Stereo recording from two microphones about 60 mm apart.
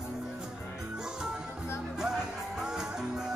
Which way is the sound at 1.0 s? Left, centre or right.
Centre.